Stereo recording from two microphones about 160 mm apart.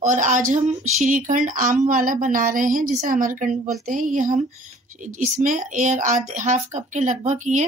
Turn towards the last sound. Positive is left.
turn(degrees=-50)  # may be behind; listen again after turning